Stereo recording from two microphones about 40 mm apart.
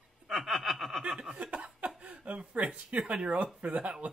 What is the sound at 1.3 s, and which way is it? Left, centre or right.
Speech, right.